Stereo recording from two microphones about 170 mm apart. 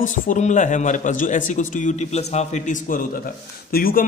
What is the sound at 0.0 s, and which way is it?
A man's voice, 50° left (ahead or behind).